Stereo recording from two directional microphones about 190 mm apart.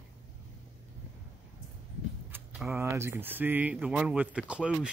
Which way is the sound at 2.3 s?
10° right (ahead or behind).